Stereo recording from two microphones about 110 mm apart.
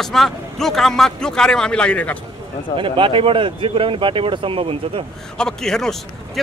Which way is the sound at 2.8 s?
50° right (ahead or behind).